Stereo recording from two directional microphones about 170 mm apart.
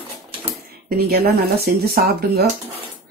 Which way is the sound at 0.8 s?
65° right (ahead or behind).